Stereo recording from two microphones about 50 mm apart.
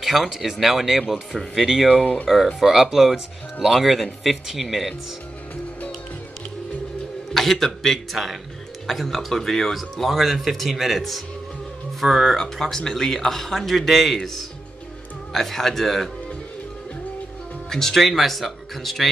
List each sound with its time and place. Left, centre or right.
0.0 s speech: centre
7.3 s speech: centre
17.6 s speech: centre